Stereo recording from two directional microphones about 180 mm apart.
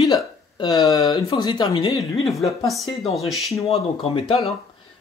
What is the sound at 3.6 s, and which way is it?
Speech, 30° left (ahead or behind).